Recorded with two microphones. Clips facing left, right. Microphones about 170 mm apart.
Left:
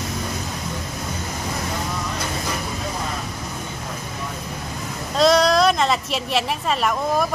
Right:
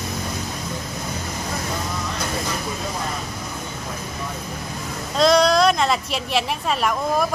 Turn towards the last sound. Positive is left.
turn(degrees=0)  # may be behind; listen again after turning